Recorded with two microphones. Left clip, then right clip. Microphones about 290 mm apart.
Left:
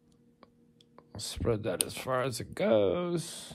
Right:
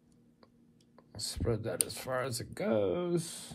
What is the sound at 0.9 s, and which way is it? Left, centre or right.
Speech, left.